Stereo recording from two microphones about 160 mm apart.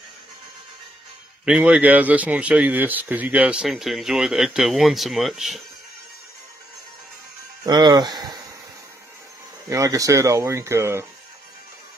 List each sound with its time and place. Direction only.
1.4 s speech: 5° right (ahead or behind)
7.6 s speech: 25° right (ahead or behind)
9.7 s speech: 20° right (ahead or behind)